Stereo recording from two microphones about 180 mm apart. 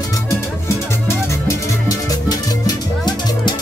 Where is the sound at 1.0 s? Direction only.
15° left (ahead or behind).